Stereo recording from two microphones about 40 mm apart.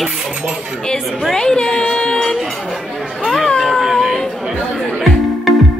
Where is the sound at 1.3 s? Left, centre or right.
Centre.